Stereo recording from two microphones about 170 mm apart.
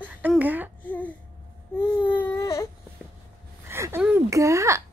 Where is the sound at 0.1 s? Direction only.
10° right (ahead or behind).